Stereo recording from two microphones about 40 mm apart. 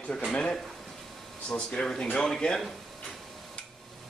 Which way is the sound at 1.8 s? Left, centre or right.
Centre.